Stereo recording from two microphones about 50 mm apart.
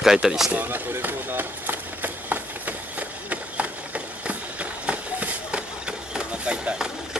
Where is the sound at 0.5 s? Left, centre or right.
Right.